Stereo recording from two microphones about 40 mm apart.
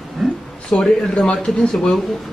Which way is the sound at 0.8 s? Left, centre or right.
Centre.